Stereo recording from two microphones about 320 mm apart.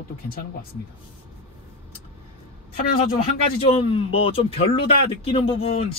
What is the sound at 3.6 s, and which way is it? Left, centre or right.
Speech, centre.